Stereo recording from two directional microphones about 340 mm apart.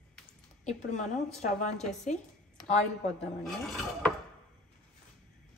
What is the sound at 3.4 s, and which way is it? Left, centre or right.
Speech, centre.